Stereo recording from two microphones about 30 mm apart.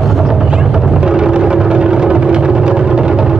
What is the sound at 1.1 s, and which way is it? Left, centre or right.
Music, right.